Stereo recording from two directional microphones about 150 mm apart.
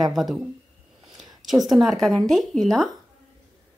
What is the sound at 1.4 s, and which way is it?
A woman's voice, centre (ahead or behind).